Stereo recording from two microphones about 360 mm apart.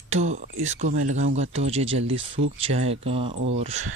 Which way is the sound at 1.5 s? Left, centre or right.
Centre.